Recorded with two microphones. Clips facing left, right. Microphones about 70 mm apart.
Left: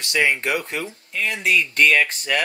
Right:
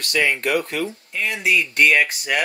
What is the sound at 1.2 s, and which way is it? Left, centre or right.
Speech, centre.